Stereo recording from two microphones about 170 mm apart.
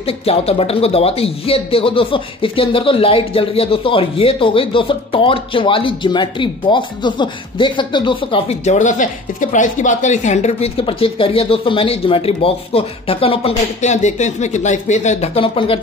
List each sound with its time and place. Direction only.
0.0 s a man's voice: 35° left (ahead or behind)